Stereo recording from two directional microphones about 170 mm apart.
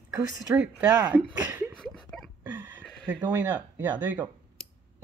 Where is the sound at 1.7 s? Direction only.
5° left (ahead or behind).